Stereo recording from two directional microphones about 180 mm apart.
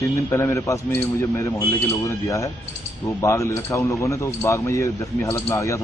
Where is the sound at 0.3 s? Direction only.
15° left (ahead or behind).